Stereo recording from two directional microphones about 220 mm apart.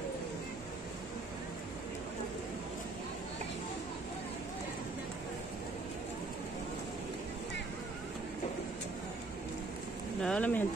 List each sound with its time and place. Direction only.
10.2 s speech: 5° left (ahead or behind)